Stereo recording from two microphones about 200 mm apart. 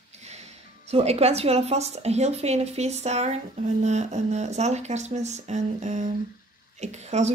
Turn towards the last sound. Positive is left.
turn(degrees=-35)  # may be behind; listen again after turning